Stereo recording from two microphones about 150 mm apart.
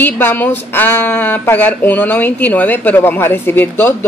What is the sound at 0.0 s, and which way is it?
A woman's voice, 15° left (ahead or behind).